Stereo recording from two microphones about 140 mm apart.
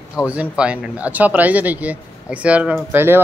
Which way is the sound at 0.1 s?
10° right (ahead or behind).